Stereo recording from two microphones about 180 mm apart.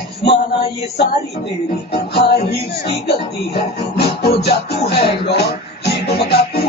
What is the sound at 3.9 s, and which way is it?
Music, 65° left (ahead or behind).